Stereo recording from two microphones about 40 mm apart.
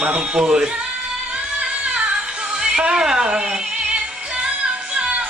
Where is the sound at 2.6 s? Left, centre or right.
Right.